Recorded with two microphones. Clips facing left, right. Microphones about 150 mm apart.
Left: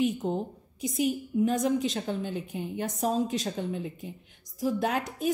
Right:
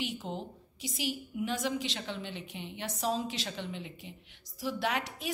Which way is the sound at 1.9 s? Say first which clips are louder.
Left 8 dB; 45° left (ahead or behind).